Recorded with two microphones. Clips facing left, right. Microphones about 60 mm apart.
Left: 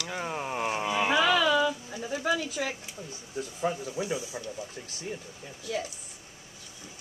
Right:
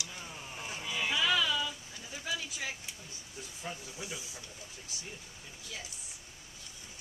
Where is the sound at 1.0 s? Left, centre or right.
Left.